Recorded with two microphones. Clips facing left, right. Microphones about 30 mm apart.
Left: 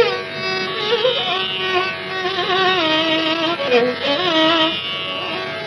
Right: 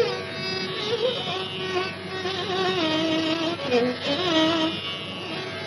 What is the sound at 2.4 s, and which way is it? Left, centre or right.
Music, left.